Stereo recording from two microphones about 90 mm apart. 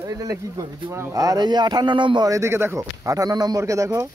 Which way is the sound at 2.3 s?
30° right (ahead or behind).